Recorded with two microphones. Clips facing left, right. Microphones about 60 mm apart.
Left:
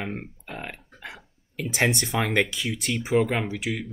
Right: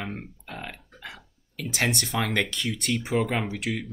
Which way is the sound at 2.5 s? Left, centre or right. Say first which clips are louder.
Even; centre.